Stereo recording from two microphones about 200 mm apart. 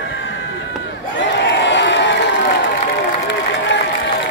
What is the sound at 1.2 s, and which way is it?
Crowd, 60° left (ahead or behind).